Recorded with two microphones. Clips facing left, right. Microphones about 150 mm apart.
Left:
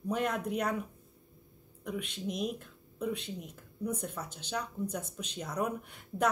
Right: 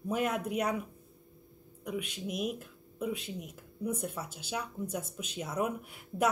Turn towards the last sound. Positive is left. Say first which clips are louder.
# right 1 dB
turn(degrees=-5)  # may be behind; listen again after turning